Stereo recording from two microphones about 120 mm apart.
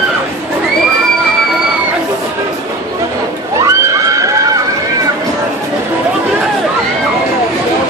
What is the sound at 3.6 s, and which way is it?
Neigh, 25° right (ahead or behind).